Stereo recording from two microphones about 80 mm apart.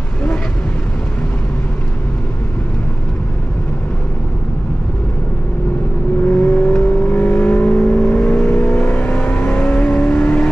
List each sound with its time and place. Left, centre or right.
6.2 s vehicle: centre